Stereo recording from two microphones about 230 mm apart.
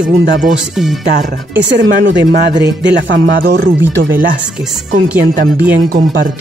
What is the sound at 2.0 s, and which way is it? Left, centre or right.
Speech, right.